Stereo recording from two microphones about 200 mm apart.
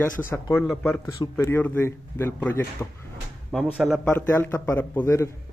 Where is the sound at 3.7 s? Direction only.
Centre (ahead or behind).